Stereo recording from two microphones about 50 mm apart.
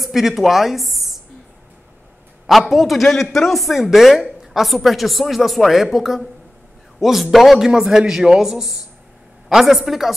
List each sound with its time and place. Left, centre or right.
0.0 s a woman's voice: centre
2.4 s a man's voice: centre